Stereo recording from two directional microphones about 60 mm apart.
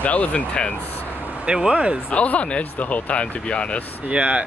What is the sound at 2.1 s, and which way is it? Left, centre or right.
Speech, left.